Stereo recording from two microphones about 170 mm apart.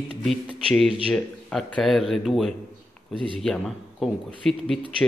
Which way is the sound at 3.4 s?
Centre (ahead or behind).